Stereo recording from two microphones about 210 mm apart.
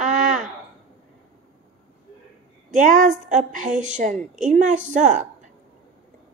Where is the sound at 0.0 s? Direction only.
35° right (ahead or behind).